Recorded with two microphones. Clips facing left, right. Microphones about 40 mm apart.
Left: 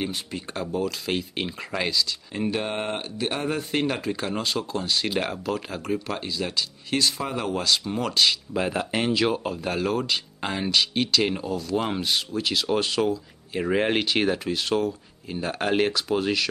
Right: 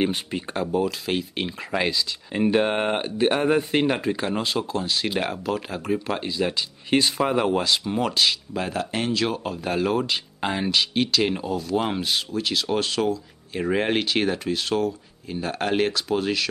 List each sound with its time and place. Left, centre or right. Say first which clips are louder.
0.0 s speech: right 6 dB; right
0.6 s speech: right 3 dB; centre
1.7 s speech: right 2 dB; centre
2.5 s speech: right 8 dB; right
7.6 s speech: right 2 dB; centre